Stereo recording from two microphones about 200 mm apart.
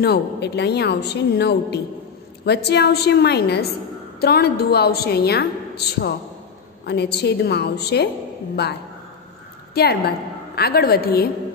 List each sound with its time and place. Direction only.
0.0 s a woman's voice: 55° left (ahead or behind)
9.8 s a woman's voice: 50° left (ahead or behind)